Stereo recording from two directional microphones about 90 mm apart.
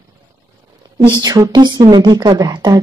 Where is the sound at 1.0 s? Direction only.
45° right (ahead or behind).